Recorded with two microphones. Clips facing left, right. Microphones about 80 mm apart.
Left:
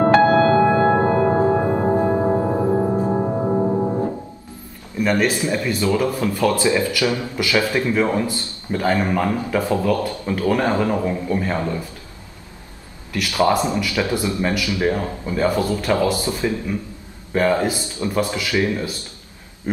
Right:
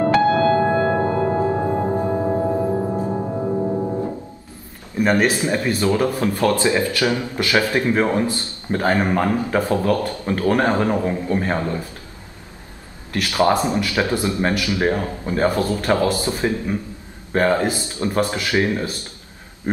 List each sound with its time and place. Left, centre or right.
0.0 s music: left
4.9 s a sound: right
5.4 s speech: right
13.1 s speech: right